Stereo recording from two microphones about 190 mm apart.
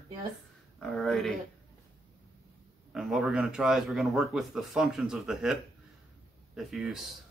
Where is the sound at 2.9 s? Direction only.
Centre (ahead or behind).